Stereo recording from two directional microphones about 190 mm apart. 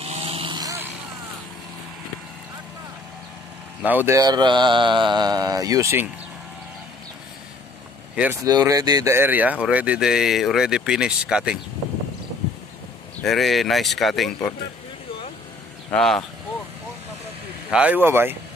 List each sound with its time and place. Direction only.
0.0 s vehicle: 30° right (ahead or behind)
3.8 s speech: 10° right (ahead or behind)
8.2 s speech: 15° right (ahead or behind)
13.2 s speech: centre (ahead or behind)
15.9 s speech: centre (ahead or behind)
17.6 s speech: 5° right (ahead or behind)